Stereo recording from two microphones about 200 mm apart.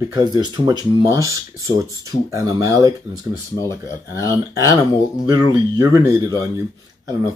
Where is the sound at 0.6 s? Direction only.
20° right (ahead or behind).